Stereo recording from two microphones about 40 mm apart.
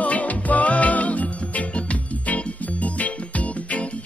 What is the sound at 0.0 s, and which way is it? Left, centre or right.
Music, left.